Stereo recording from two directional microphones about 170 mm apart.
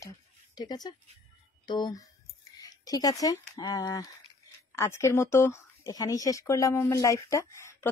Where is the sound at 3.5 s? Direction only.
20° left (ahead or behind).